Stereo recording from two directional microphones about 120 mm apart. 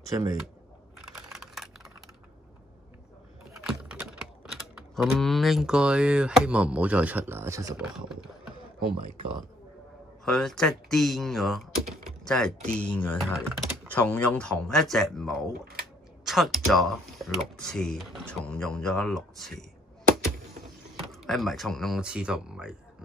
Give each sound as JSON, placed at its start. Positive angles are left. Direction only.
{"t": 0.1, "sound": "speech", "side_deg": -30}
{"t": 0.9, "sound": "computer keyboard", "side_deg": -5}
{"t": 3.6, "sound": "typing", "side_deg": -5}
{"t": 8.8, "sound": "speech", "side_deg": -45}
{"t": 10.2, "sound": "speech", "side_deg": 5}
{"t": 13.2, "sound": "speech", "side_deg": 0}
{"t": 13.9, "sound": "speech", "side_deg": 15}
{"t": 21.1, "sound": "speech", "side_deg": 0}